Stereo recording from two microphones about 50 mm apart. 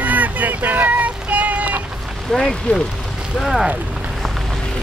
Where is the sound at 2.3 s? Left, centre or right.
Centre.